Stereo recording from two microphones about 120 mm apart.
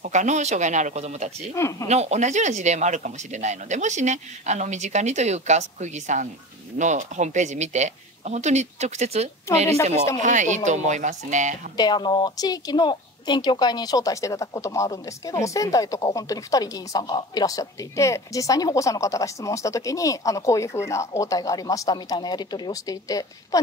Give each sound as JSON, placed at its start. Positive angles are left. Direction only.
{"t": 0.0, "sound": "speech", "side_deg": -85}
{"t": 1.5, "sound": "a woman's voice", "side_deg": 25}
{"t": 1.9, "sound": "speech", "side_deg": -65}
{"t": 10.2, "sound": "speech", "side_deg": -90}
{"t": 11.7, "sound": "a woman's voice", "side_deg": 35}